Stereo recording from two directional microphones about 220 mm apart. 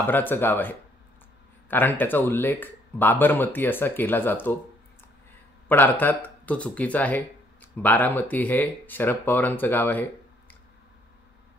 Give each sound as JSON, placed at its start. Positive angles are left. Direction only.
{"t": 0.0, "sound": "speech", "side_deg": 10}
{"t": 5.7, "sound": "speech", "side_deg": 10}